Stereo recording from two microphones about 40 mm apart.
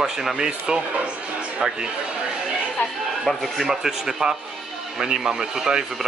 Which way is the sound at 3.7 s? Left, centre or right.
Centre.